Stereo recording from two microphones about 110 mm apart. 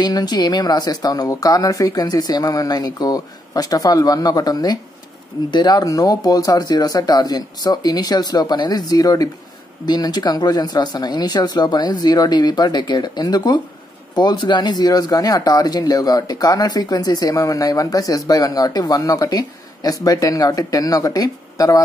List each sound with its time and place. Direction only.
0.0 s speech: 40° left (ahead or behind)